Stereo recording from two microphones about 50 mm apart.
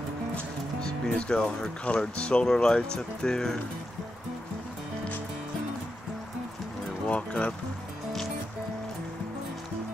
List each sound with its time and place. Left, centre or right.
0.7 s speech: centre
7.1 s music: left